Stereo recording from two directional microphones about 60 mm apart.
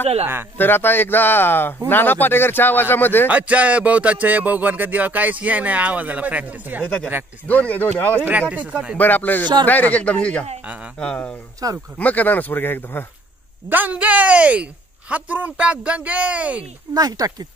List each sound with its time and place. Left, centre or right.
0.6 s speech: left
3.3 s speech: right
7.4 s a man's voice: left
8.2 s speech: right
8.9 s a man's voice: left
10.6 s speech: right
11.0 s speech: centre
11.6 s speech: right
12.0 s speech: left
13.7 s speech: right
16.9 s speech: right